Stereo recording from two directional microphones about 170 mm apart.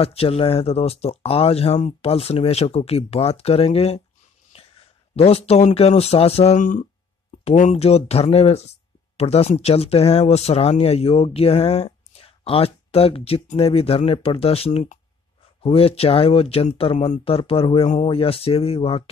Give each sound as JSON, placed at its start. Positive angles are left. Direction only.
{"t": 0.0, "sound": "speech", "side_deg": 35}
{"t": 5.1, "sound": "speech", "side_deg": 35}